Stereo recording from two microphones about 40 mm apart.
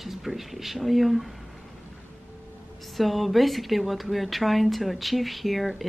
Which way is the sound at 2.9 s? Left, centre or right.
Centre.